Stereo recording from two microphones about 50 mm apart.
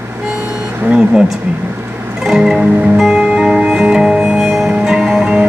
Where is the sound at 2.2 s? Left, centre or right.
Centre.